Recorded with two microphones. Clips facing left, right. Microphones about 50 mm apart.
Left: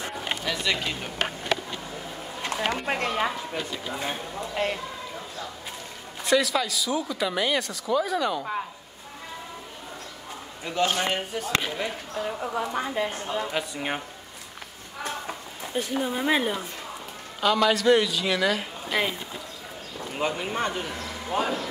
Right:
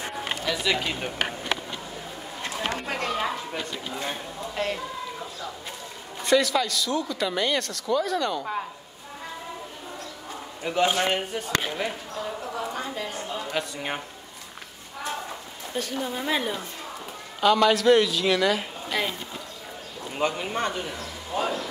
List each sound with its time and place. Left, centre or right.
0.4 s speech: centre
2.5 s speech: left
2.9 s speech: centre
3.3 s speech: centre
6.2 s speech: centre
10.6 s a man's voice: centre
12.2 s a woman's voice: centre
13.5 s speech: centre
15.7 s speech: centre
17.4 s a man's voice: centre
18.9 s speech: centre
20.2 s a man's voice: centre
21.4 s speech: left